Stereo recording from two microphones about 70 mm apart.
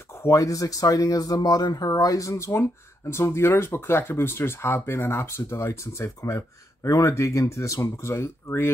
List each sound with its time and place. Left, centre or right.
0.1 s speech: left